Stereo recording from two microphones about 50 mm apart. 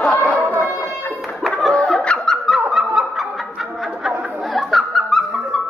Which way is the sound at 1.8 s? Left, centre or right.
Centre.